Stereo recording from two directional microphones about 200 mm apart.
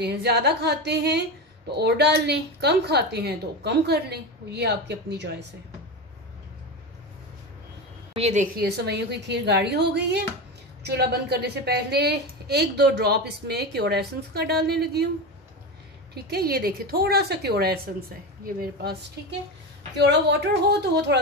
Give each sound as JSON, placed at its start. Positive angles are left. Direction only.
{"t": 0.0, "sound": "a woman's voice", "side_deg": -55}
{"t": 8.1, "sound": "a woman's voice", "side_deg": -35}
{"t": 8.5, "sound": "a woman's voice", "side_deg": -55}
{"t": 16.2, "sound": "a woman's voice", "side_deg": -50}
{"t": 20.0, "sound": "a woman's voice", "side_deg": -55}